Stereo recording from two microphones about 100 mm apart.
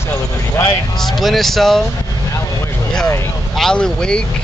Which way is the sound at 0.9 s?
Centre (ahead or behind).